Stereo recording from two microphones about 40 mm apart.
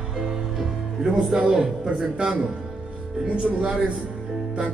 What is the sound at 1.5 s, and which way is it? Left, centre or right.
Speech, centre.